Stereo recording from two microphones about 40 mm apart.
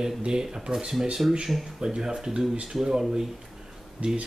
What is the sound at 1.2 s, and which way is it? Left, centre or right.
Speech, right.